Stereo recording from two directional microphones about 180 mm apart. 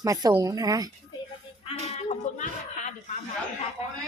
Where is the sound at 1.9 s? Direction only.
40° left (ahead or behind).